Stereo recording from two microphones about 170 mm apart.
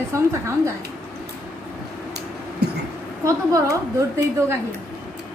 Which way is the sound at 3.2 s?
20° right (ahead or behind).